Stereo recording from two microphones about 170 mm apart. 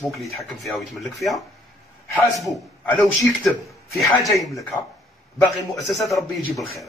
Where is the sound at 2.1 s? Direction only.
Centre (ahead or behind).